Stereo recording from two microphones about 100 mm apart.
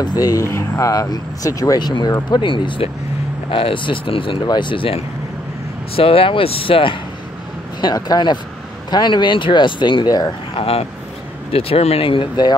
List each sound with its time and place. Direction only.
0.0 s speech: 40° left (ahead or behind); by 7.0 s 60° left (ahead or behind)
7.8 s speech: 45° left (ahead or behind)
10.5 s speech: 75° left (ahead or behind); by 12.5 s 50° left (ahead or behind)